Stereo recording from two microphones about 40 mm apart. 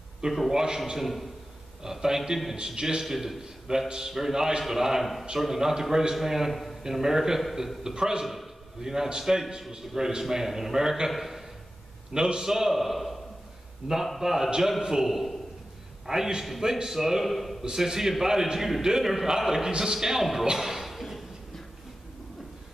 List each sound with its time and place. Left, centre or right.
0.5 s a man's voice: centre
6.8 s a man's voice: centre
12.1 s a man's voice: centre
14.2 s a man's voice: centre
15.0 s a man's voice: centre
16.1 s a man's voice: centre
17.6 s a man's voice: centre
20.5 s a sound: centre